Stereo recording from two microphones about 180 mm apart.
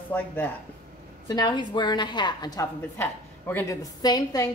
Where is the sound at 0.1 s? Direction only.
10° left (ahead or behind).